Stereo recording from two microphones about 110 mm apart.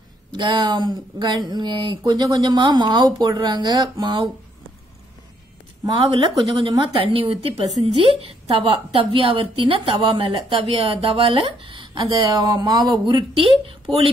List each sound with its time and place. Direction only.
0.3 s a woman's voice: 40° right (ahead or behind)
5.9 s a woman's voice: 50° right (ahead or behind)
7.1 s a woman's voice: 60° right (ahead or behind)
12.3 s speech: 40° right (ahead or behind)
13.0 s a woman's voice: 55° right (ahead or behind)